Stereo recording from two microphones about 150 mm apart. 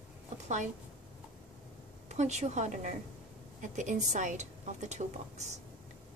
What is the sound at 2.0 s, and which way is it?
A woman's voice, 50° right (ahead or behind).